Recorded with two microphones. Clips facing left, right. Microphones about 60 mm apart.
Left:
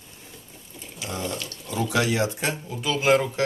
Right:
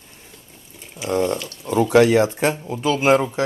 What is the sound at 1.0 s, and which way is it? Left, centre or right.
Speech, right.